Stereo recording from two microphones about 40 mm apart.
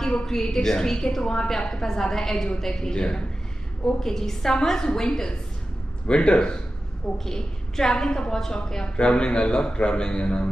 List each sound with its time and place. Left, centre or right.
0.0 s a woman's voice: centre
7.2 s a woman's voice: centre; by 10.5 s left